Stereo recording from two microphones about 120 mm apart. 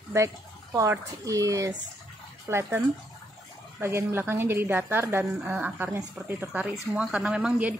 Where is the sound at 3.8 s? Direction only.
20° right (ahead or behind).